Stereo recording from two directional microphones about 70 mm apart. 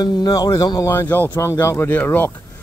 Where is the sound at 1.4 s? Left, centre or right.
Left.